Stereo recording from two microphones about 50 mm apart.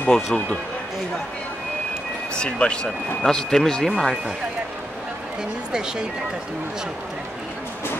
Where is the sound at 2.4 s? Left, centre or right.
Centre.